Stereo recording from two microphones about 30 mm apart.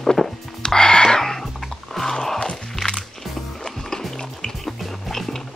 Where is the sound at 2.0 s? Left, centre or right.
Centre.